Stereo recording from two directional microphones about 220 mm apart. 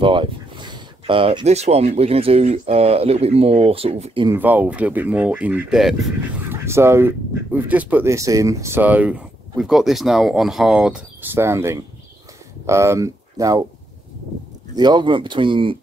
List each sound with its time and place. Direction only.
0.0 s speech: 20° right (ahead or behind)
4.3 s speech: 10° right (ahead or behind)
14.8 s speech: 20° right (ahead or behind)